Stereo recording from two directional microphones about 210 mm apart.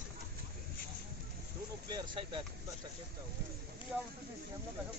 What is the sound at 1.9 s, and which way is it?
Vehicle, 20° right (ahead or behind).